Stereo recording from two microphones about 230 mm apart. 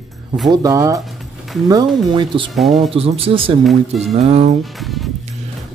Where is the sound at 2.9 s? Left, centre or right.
Right.